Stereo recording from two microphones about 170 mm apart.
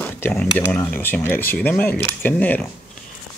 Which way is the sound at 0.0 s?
10° left (ahead or behind).